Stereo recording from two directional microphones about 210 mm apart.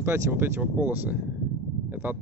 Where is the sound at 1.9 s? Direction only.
10° right (ahead or behind).